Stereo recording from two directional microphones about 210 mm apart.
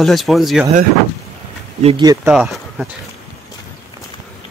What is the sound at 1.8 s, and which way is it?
Speech, 25° right (ahead or behind).